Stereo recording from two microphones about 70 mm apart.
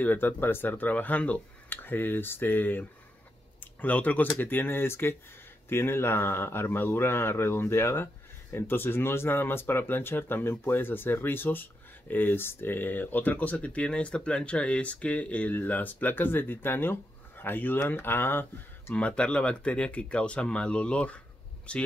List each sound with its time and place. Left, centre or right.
0.0 s speech: left
3.8 s speech: left
18.9 s speech: centre